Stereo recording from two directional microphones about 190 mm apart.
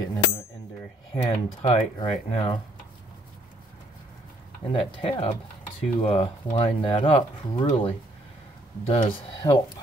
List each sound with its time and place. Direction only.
0.0 s bicycle bell: 20° left (ahead or behind)
1.3 s speech: 30° left (ahead or behind)
4.7 s speech: 25° left (ahead or behind)